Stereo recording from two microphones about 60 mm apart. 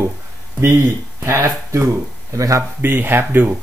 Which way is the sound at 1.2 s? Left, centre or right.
Right.